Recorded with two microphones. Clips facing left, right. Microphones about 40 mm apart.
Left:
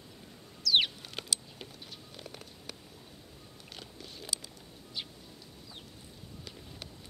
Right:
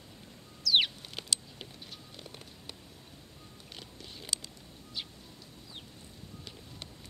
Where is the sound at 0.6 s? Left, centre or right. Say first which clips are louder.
Even; centre.